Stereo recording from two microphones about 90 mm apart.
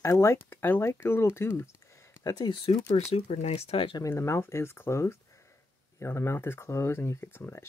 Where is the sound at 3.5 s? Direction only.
90° left.